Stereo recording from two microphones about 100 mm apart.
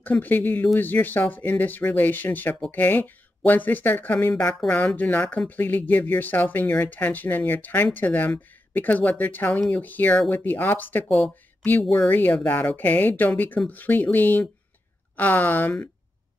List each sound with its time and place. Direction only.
0.0 s speech: 20° left (ahead or behind)
11.1 s speech: centre (ahead or behind)
12.1 s speech: 20° left (ahead or behind)